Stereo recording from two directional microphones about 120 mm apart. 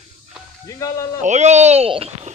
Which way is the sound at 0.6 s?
25° left (ahead or behind).